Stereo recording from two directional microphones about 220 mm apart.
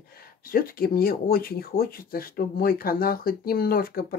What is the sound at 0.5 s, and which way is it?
Speech, 40° left (ahead or behind).